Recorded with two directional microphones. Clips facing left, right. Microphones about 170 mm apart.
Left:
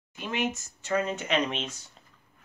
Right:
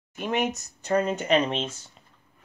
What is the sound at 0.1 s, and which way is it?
Speech, 50° right (ahead or behind).